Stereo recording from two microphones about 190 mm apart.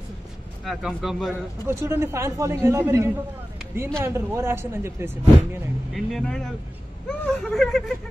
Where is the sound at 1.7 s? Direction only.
15° right (ahead or behind).